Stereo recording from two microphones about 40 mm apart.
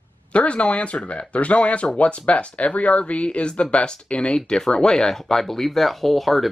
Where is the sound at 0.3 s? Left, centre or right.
Left.